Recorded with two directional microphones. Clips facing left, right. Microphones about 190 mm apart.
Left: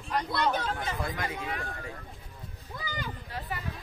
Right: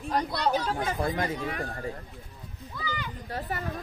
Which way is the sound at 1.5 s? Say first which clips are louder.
Right 4 dB; 45° right (ahead or behind).